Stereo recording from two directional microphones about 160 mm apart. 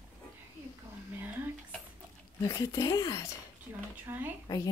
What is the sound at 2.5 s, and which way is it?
Speech, 20° left (ahead or behind).